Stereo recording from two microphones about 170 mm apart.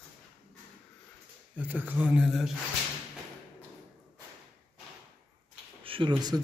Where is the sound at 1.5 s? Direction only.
10° right (ahead or behind).